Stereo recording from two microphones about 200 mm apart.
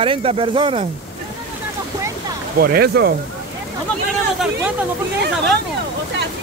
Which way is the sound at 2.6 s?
50° right (ahead or behind).